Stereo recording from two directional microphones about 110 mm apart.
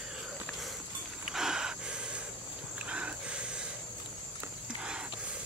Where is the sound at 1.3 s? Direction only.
5° right (ahead or behind).